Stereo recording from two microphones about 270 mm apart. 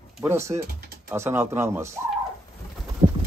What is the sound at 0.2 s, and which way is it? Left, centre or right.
Speech, centre.